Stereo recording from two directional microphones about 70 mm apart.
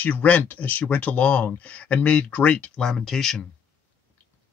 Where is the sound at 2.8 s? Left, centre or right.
Centre.